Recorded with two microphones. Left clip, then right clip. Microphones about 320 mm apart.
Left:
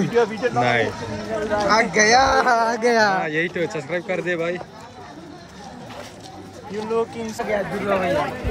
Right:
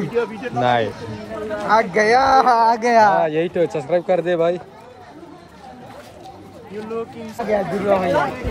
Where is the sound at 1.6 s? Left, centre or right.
Right.